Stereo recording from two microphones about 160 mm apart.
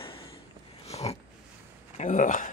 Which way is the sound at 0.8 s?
40° left (ahead or behind).